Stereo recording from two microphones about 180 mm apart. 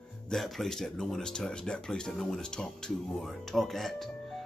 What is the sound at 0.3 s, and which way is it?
Speech, centre (ahead or behind).